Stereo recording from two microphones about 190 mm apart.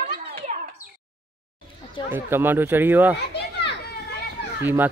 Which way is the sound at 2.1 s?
10° right (ahead or behind).